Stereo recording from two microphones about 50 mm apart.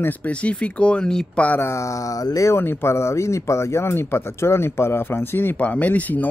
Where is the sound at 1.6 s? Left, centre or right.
Left.